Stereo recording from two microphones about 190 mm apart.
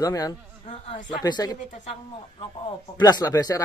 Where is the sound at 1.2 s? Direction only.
20° left (ahead or behind).